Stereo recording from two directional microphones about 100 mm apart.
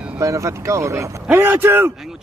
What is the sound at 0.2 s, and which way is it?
Speech, 30° right (ahead or behind).